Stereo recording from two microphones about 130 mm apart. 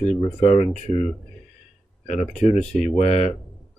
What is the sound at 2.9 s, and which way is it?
Speech, 60° left (ahead or behind).